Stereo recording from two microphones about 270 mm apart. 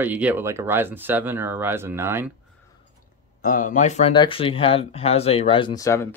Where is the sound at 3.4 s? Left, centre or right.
Left.